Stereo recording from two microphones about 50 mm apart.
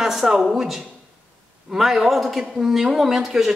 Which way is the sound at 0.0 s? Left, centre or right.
Centre.